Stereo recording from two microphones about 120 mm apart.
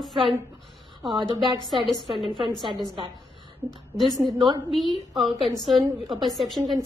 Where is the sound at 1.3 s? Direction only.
35° right (ahead or behind).